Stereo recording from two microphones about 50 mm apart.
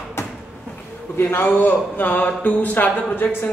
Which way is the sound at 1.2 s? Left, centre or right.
Left.